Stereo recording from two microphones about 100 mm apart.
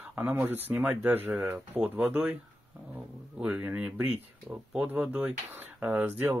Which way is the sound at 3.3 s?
10° right (ahead or behind).